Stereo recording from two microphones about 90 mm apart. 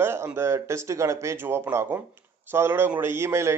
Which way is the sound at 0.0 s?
25° right (ahead or behind).